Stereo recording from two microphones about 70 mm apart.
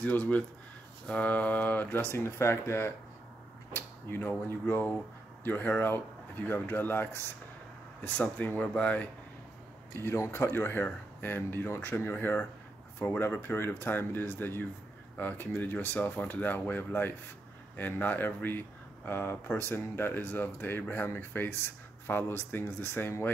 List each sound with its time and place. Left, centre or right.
0.0 s speech: left
2.1 s speech: left
9.9 s speech: left